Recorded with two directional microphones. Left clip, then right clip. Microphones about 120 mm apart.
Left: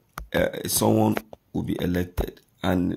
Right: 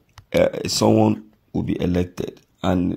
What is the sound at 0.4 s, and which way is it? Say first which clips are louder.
Speech: right 6 dB; 20° right (ahead or behind).